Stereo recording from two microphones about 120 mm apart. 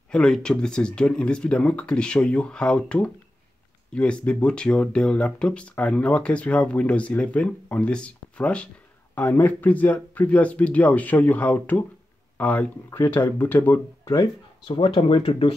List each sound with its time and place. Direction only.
0.1 s speech: 5° left (ahead or behind)
14.7 s speech: 50° left (ahead or behind)